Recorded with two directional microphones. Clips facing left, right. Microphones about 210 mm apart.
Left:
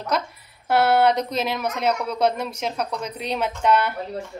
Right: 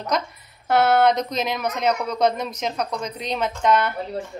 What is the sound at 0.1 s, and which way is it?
A woman's voice, 5° left (ahead or behind).